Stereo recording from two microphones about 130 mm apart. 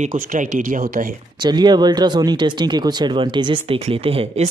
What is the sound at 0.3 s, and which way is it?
Speech, 90° right.